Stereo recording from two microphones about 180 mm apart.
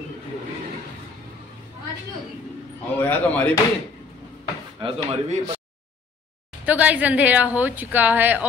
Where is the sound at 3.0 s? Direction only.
10° left (ahead or behind).